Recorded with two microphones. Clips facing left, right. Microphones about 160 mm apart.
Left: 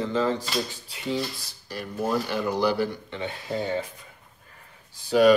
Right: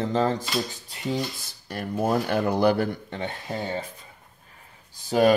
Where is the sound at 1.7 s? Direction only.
55° right (ahead or behind).